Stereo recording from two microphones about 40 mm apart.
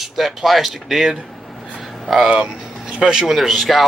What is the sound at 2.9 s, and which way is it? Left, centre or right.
Speech, centre.